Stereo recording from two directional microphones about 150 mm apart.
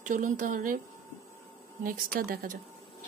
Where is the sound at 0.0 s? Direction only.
55° right (ahead or behind).